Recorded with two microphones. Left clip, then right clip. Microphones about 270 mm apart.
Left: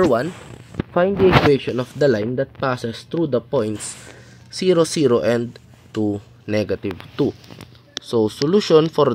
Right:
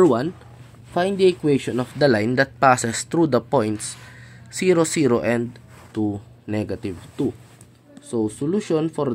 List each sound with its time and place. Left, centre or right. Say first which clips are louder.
0.9 s speech: left 4 dB; centre